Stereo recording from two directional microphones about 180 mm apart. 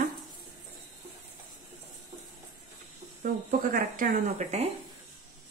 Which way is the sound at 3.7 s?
50° right (ahead or behind).